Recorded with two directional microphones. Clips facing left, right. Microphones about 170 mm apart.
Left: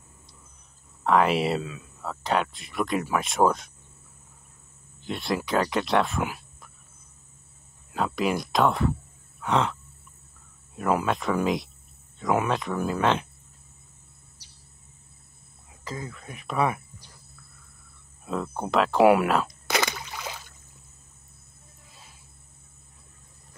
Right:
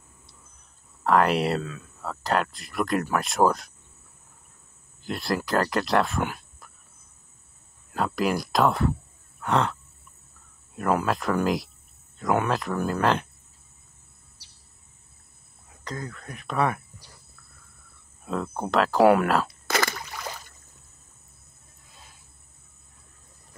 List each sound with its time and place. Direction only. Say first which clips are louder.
1.0 s speech: even; centre (ahead or behind)
5.0 s speech: right 1 dB; centre (ahead or behind)
7.9 s speech: right 1 dB; centre (ahead or behind)
9.4 s a sound: even; centre (ahead or behind)
10.8 s speech: even; centre (ahead or behind)
15.8 s speech: right 1 dB; 5° left (ahead or behind)
18.2 s speech: right 1 dB; centre (ahead or behind)
19.7 s a sound: even; 15° left (ahead or behind)
20.1 s a sound: even; 5° left (ahead or behind)